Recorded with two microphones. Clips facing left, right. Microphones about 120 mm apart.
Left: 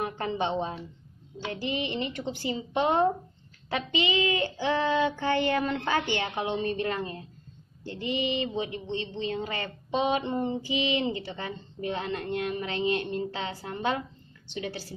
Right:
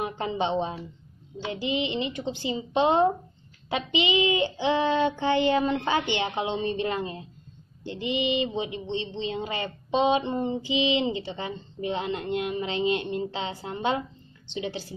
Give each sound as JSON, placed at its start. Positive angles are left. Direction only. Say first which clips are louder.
{"t": 0.0, "sound": "child singing", "louder": "right 2 dB", "side_deg": -20}